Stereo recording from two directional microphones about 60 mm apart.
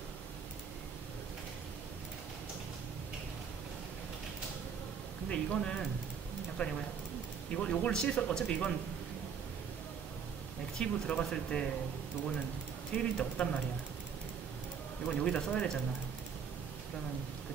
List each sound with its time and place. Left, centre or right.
5.3 s speech: centre
10.8 s speech: centre
12.9 s speech: left
15.0 s speech: centre